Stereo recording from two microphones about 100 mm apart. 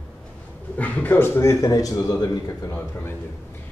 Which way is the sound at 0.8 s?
15° left (ahead or behind).